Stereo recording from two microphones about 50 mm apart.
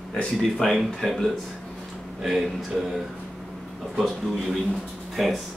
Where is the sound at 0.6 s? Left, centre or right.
Centre.